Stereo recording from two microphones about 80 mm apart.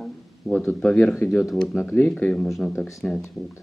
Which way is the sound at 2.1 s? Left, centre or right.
Centre.